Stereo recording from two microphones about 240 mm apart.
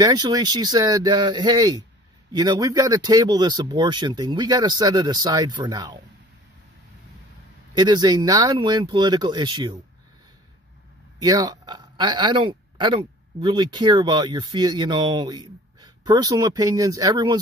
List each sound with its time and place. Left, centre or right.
0.0 s speech: centre
7.7 s speech: centre
11.2 s speech: centre